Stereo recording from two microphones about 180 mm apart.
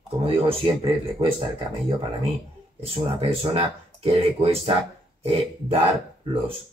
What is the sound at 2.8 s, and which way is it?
Speech, 35° right (ahead or behind).